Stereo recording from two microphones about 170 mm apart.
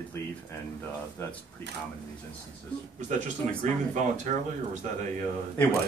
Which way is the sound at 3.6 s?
45° right (ahead or behind).